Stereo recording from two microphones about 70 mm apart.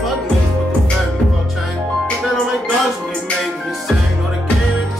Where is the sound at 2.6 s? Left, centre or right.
Centre.